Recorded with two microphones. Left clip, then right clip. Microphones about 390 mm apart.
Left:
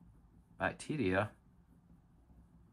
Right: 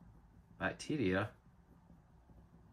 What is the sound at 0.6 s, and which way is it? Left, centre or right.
Speech, centre.